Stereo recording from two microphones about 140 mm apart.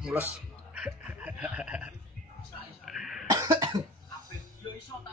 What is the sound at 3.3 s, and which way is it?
Cough, 25° right (ahead or behind).